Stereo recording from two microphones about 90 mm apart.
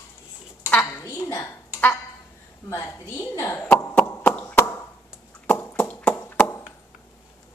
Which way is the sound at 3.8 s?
25° left (ahead or behind).